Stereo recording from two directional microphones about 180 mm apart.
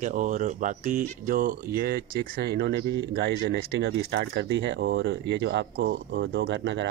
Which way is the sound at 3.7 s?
85° right.